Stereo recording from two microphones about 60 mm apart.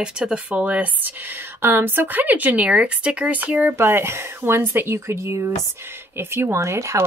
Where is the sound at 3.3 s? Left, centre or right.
Right.